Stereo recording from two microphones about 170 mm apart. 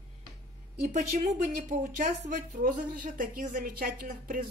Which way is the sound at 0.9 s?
45° right (ahead or behind).